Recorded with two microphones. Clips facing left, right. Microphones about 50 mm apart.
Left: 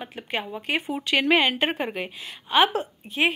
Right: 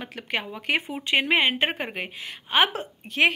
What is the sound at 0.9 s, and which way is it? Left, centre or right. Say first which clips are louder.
Speech: left 4 dB; right.